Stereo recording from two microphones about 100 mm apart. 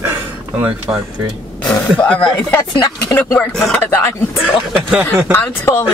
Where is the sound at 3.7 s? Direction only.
20° left (ahead or behind).